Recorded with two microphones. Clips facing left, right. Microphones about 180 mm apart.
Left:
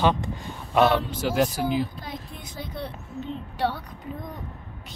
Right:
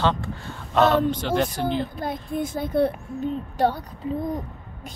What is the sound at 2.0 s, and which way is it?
A child's voice, 50° right (ahead or behind).